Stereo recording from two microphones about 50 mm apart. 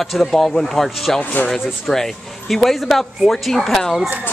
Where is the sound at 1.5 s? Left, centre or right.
Centre.